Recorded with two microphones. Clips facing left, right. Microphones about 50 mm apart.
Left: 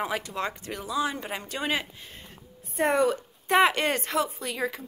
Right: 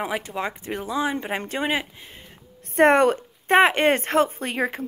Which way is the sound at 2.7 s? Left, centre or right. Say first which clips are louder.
Right 7 dB; right.